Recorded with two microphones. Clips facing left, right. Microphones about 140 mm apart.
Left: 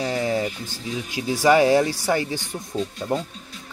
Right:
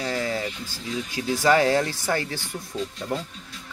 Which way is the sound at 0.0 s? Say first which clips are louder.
Left 4 dB; 20° left (ahead or behind).